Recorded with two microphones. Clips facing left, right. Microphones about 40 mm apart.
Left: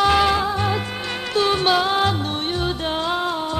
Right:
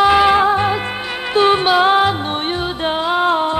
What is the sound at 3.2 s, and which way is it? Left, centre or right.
Music, right.